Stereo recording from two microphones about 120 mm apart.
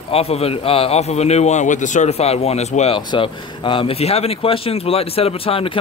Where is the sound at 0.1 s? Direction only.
55° left (ahead or behind).